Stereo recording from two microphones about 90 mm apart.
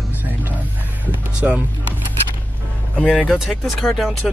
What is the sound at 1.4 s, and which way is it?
Speech, 20° right (ahead or behind).